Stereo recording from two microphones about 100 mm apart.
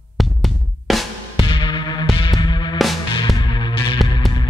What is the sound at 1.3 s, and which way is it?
Music, 55° left (ahead or behind).